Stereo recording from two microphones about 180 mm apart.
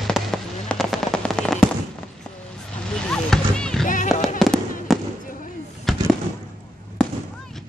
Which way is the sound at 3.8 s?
45° left (ahead or behind).